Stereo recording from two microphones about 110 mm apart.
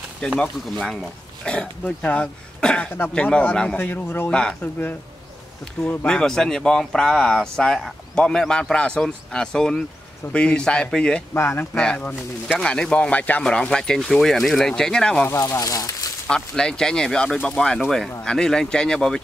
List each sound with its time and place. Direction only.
0.4 s speech: 10° left (ahead or behind)
4.3 s speech: 10° left (ahead or behind)
11.3 s speech: 25° left (ahead or behind)
11.7 s speech: 10° left (ahead or behind)
15.2 s speech: 25° left (ahead or behind)
16.3 s speech: 5° left (ahead or behind)